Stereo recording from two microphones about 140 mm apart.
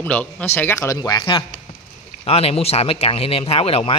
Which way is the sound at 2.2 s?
45° left (ahead or behind).